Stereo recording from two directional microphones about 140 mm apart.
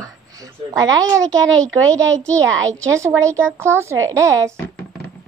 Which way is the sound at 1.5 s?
5° left (ahead or behind).